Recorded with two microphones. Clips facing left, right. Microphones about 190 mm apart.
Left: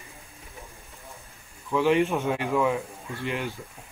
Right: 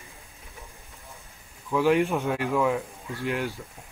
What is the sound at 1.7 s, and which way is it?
Speech, 10° right (ahead or behind).